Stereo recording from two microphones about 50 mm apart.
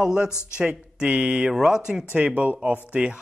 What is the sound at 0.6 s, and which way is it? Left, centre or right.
Speech, centre.